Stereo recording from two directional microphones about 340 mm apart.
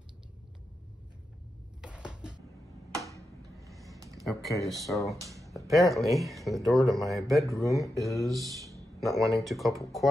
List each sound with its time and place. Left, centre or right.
1.8 s a sound: centre
4.3 s speech: centre
7.4 s speech: centre
8.3 s speech: centre